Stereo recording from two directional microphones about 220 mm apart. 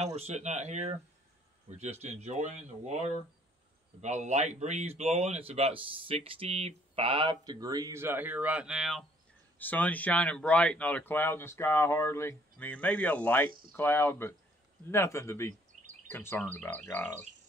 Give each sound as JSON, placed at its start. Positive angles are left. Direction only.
{"t": 0.0, "sound": "speech", "side_deg": -30}
{"t": 15.7, "sound": "a sound", "side_deg": -30}
{"t": 16.1, "sound": "speech", "side_deg": 10}